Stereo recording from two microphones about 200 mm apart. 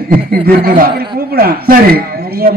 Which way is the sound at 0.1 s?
45° right (ahead or behind).